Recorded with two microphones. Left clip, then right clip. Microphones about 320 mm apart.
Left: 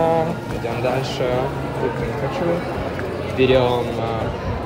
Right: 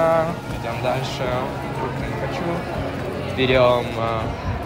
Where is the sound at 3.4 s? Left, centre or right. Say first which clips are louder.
Even; right.